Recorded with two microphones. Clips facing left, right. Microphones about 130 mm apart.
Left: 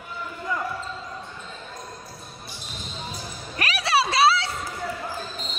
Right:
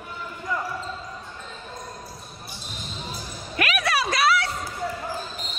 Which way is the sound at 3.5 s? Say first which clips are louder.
Left 1 dB; 35° left (ahead or behind).